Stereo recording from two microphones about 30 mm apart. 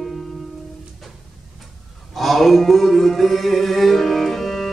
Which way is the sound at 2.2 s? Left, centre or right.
Centre.